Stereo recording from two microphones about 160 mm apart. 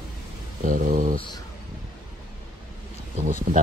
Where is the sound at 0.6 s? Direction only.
55° right (ahead or behind).